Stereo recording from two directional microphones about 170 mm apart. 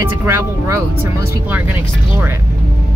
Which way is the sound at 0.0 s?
15° right (ahead or behind).